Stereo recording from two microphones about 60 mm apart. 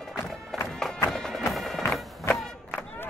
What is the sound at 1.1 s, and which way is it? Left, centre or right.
Music, centre.